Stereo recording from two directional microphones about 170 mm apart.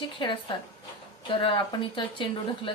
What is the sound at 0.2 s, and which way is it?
Speech, 30° left (ahead or behind).